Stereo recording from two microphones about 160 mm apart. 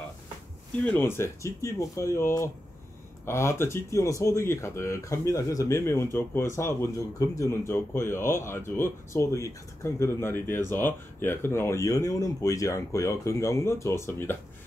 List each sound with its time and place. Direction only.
0.7 s speech: 10° left (ahead or behind)